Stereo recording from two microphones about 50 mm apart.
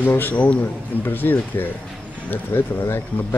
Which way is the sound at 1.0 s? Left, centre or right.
Left.